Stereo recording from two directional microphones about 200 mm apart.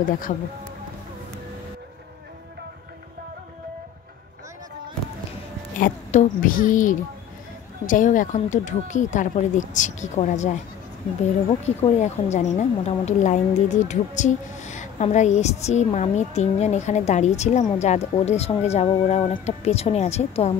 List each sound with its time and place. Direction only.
5.8 s a woman's voice: 40° left (ahead or behind)